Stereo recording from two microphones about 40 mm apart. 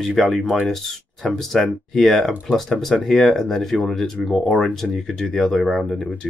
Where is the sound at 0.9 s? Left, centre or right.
Centre.